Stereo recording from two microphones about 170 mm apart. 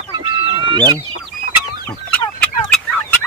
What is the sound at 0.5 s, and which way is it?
Chicken, 25° right (ahead or behind).